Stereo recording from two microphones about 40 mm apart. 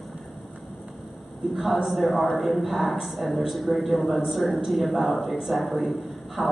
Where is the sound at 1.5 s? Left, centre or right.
Centre.